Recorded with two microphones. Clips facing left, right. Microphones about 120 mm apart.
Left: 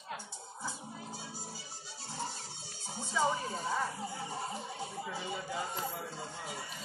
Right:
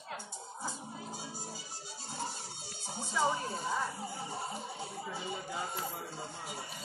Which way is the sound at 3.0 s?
10° right (ahead or behind).